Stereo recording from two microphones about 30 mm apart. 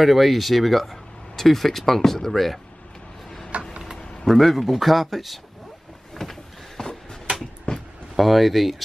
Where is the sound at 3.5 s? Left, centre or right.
Right.